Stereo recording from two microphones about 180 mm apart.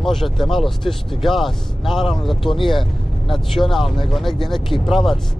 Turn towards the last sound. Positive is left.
turn(degrees=0)  # may be behind; listen again after turning